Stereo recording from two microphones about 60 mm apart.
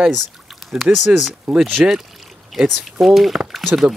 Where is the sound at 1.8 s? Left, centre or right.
Right.